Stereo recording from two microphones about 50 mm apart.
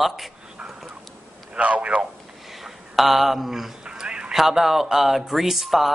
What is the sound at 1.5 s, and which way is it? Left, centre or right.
Speech, right.